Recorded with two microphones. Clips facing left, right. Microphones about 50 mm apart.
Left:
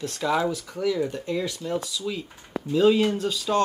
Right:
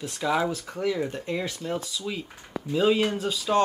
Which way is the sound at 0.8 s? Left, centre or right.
Right.